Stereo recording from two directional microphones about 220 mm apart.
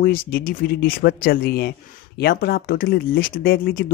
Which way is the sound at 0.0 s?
40° left (ahead or behind).